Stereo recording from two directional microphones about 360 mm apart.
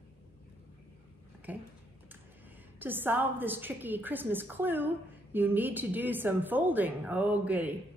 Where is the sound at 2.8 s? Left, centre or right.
Centre.